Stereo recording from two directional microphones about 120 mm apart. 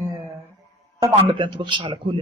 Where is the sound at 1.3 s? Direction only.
40° right (ahead or behind).